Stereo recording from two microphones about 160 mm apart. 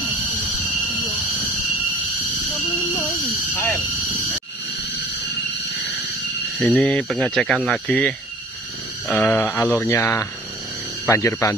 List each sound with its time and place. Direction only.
0.7 s a sound: centre (ahead or behind)
3.3 s speech: 10° left (ahead or behind)
6.6 s speech: 10° left (ahead or behind)